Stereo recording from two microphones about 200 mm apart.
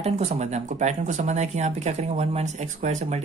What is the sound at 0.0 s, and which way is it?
Speech, 35° right (ahead or behind).